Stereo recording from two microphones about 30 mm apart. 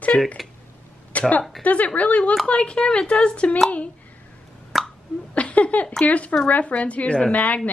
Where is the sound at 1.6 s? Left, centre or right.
Left.